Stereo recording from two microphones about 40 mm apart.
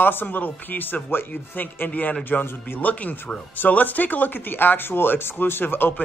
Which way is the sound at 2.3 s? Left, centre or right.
Left.